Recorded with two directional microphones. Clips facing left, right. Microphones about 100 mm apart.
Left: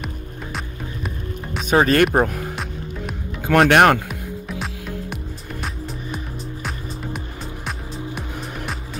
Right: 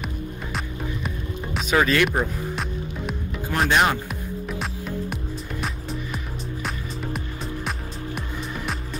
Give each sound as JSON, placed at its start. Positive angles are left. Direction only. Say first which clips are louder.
{"t": 0.0, "sound": "music", "louder": "right 1 dB", "side_deg": 0}
{"t": 1.7, "sound": "speech", "louder": "left 4 dB", "side_deg": 45}
{"t": 3.4, "sound": "speech", "louder": "left 7 dB", "side_deg": 70}
{"t": 4.1, "sound": "music", "louder": "even", "side_deg": 0}